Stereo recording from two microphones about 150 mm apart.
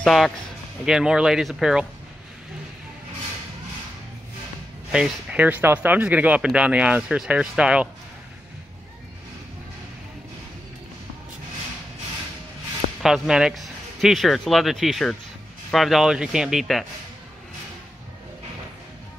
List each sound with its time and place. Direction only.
0.0 s speech: centre (ahead or behind)
4.9 s speech: 5° right (ahead or behind)
13.0 s speech: 5° right (ahead or behind)